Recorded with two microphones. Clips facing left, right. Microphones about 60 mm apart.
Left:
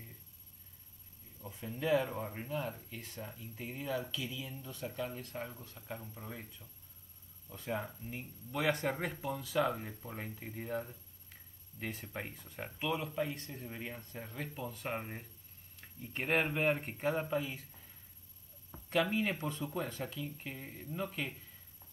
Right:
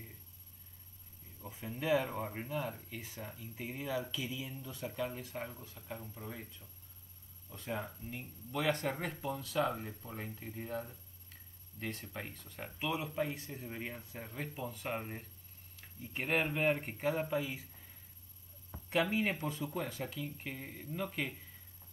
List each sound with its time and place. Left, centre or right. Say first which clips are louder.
1.5 s speech: left 1 dB; centre
12.1 s speech: left 2 dB; left
12.4 s speech: left 2 dB; centre
12.8 s speech: even; centre
18.9 s speech: even; centre